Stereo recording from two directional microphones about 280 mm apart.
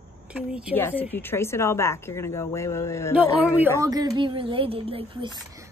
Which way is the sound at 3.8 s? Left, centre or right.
Centre.